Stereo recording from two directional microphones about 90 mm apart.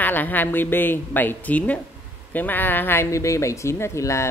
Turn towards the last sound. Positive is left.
turn(degrees=35)  # may be behind; listen again after turning